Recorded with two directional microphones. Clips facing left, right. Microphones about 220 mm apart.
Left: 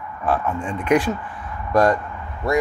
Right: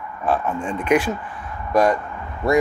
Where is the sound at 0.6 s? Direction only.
25° right (ahead or behind).